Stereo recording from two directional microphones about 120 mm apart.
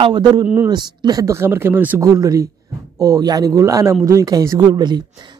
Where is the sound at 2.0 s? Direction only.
30° right (ahead or behind).